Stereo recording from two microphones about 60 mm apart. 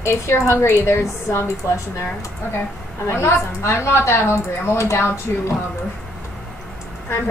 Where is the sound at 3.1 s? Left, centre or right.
Left.